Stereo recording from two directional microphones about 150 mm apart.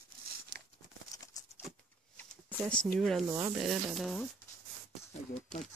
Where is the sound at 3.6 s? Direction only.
Centre (ahead or behind).